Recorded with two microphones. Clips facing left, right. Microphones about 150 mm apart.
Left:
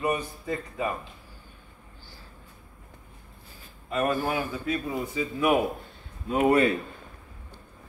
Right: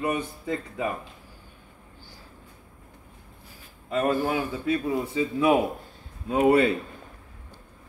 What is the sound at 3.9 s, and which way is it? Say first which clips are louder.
A man's voice: right 2 dB; 25° right (ahead or behind).